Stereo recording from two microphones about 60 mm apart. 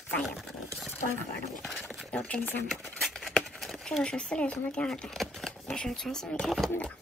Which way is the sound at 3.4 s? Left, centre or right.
Centre.